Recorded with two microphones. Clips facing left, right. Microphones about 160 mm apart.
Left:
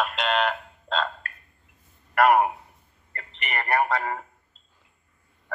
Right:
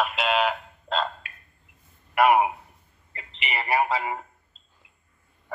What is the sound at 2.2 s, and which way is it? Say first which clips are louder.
Speech: even; 5° right (ahead or behind).